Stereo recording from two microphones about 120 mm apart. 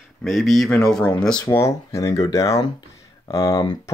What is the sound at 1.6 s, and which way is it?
Speech, 25° left (ahead or behind).